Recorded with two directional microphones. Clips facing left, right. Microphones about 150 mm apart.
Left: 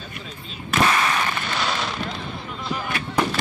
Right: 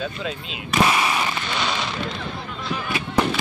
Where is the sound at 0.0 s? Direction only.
85° right.